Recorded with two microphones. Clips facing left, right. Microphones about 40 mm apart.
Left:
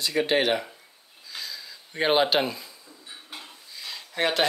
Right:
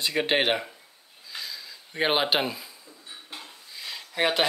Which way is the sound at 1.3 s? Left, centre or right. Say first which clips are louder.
Even; centre.